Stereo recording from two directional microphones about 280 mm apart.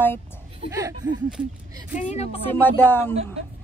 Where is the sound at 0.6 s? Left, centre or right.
Centre.